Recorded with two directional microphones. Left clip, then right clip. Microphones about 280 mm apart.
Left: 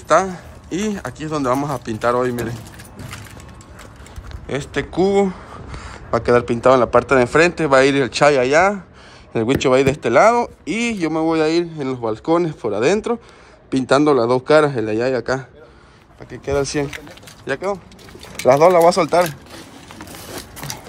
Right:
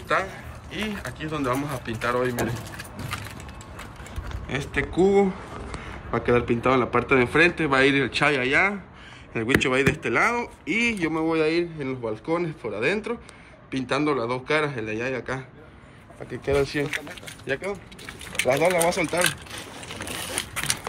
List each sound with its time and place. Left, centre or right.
0.1 s speech: centre
4.5 s speech: centre
16.4 s speech: centre
18.5 s speech: left